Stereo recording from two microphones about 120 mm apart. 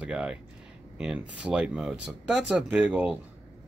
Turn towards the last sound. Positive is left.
turn(degrees=-15)  # may be behind; listen again after turning